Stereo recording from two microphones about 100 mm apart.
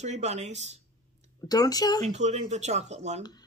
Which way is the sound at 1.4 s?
40° left (ahead or behind).